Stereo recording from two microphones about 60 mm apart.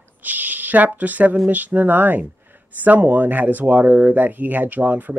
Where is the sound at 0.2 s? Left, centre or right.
Right.